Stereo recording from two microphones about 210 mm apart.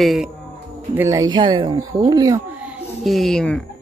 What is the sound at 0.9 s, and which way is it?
Speech, 15° right (ahead or behind).